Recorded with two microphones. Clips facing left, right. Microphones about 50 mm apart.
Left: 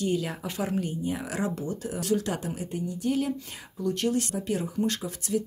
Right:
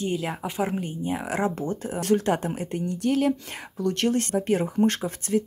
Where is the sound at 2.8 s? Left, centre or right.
Right.